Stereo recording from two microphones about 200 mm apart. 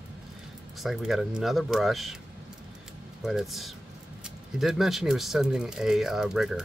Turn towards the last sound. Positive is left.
turn(degrees=0)  # may be behind; listen again after turning